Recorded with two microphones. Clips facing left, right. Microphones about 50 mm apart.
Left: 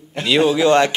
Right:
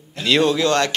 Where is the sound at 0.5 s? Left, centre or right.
Centre.